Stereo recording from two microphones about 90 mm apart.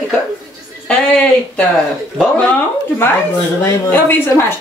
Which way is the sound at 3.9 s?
20° left (ahead or behind).